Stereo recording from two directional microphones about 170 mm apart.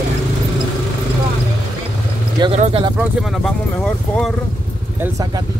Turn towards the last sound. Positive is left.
turn(degrees=0)  # may be behind; listen again after turning